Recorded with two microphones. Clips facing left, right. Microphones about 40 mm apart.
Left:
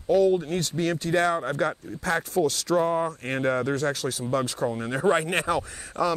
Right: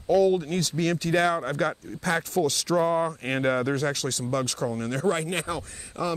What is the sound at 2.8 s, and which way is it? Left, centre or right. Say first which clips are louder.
Speech: right 1 dB; centre.